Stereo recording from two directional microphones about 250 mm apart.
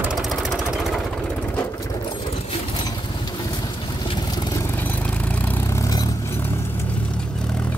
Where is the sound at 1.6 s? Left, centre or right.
Centre.